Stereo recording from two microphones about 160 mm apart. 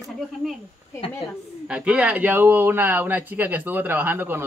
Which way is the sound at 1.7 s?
5° right (ahead or behind).